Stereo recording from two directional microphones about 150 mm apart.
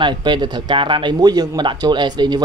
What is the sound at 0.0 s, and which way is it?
Speech, 30° right (ahead or behind).